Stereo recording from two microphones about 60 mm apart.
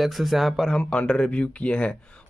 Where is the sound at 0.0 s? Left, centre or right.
Centre.